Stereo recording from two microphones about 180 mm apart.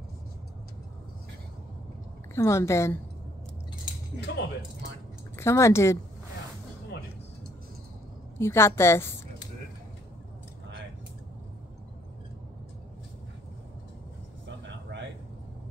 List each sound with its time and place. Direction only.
2.3 s a woman's voice: 15° left (ahead or behind)
4.3 s speech: 75° left (ahead or behind)
5.3 s a woman's voice: 15° left (ahead or behind)
8.4 s a woman's voice: 15° left (ahead or behind)